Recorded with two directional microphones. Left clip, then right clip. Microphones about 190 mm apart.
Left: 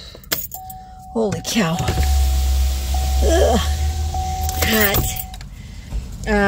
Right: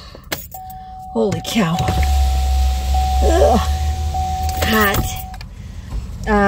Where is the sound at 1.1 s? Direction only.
20° right (ahead or behind).